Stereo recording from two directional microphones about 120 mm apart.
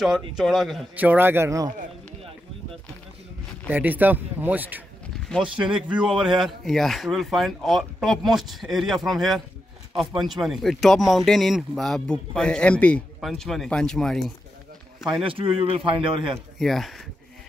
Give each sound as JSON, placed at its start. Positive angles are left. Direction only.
{"t": 0.4, "sound": "speech", "side_deg": 0}
{"t": 0.9, "sound": "speech", "side_deg": -15}
{"t": 3.7, "sound": "speech", "side_deg": -15}
{"t": 15.2, "sound": "speech", "side_deg": -50}
{"t": 16.5, "sound": "speech", "side_deg": 0}